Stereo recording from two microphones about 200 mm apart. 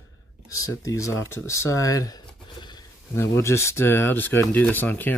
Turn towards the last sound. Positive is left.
turn(degrees=10)  # may be behind; listen again after turning